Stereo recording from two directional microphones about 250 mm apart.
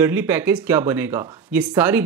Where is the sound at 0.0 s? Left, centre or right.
Centre.